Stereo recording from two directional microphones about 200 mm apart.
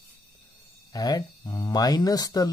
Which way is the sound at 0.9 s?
20° left (ahead or behind).